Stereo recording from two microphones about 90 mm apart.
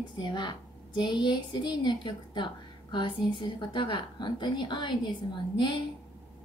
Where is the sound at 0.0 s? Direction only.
55° left (ahead or behind).